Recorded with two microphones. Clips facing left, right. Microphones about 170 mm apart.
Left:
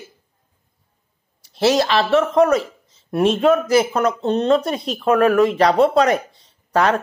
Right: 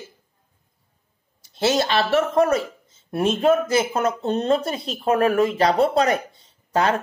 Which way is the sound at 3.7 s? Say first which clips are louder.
Left 4 dB; 35° left (ahead or behind).